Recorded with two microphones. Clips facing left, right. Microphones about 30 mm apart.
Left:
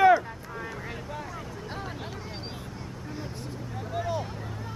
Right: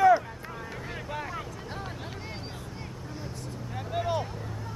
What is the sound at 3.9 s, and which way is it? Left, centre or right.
Vehicle, right.